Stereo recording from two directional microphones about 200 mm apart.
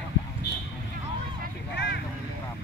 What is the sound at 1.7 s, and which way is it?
Vehicle, 60° left (ahead or behind).